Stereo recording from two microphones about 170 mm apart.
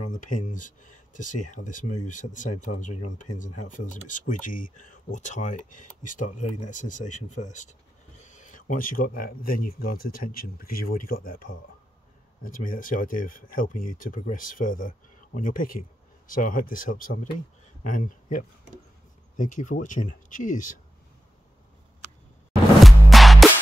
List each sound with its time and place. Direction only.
0.1 s speech: 50° left (ahead or behind)
22.8 s music: centre (ahead or behind)